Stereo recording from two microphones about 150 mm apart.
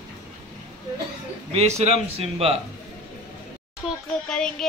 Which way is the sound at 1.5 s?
45° right (ahead or behind).